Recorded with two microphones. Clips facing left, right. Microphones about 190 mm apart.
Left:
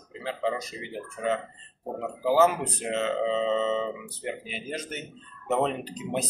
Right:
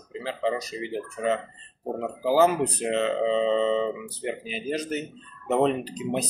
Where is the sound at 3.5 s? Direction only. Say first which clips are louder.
Right 3 dB; 35° right (ahead or behind).